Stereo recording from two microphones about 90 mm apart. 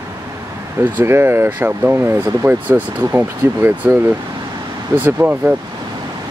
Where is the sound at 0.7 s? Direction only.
20° right (ahead or behind).